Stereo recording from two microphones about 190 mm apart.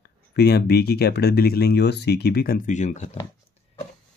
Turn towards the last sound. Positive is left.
turn(degrees=40)  # may be behind; listen again after turning